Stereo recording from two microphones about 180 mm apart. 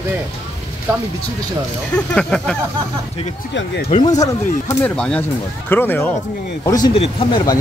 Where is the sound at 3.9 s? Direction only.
25° left (ahead or behind).